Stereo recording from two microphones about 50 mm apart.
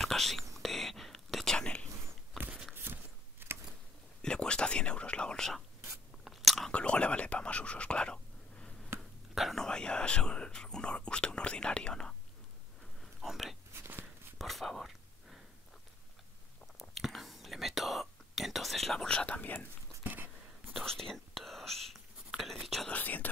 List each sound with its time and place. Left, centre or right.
0.0 s whispering: centre
2.7 s a sound: right
4.2 s whispering: centre
6.2 s biting: centre
6.7 s whispering: left
9.3 s whispering: centre
9.6 s whispering: centre
13.0 s a sound: centre
14.4 s whispering: centre
16.7 s whispering: centre
18.9 s whispering: centre; by 19.7 s left
20.0 s a sound: right
20.8 s whispering: centre
22.8 s whispering: left